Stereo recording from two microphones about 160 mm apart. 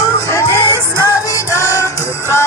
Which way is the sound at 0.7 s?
15° right (ahead or behind).